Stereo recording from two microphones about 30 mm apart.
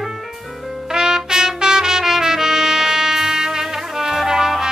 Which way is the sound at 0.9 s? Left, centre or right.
Right.